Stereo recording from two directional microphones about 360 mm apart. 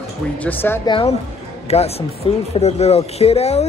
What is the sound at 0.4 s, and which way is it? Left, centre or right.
A woman's voice, centre.